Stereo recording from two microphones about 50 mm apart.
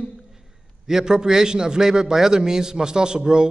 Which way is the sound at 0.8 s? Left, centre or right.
Centre.